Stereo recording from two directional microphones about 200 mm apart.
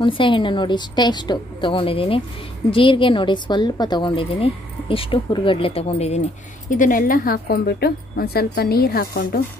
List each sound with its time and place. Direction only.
0.0 s a woman's voice: 25° left (ahead or behind)
6.7 s speech: 40° left (ahead or behind)